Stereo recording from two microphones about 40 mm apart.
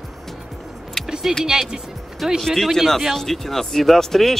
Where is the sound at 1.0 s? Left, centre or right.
Centre.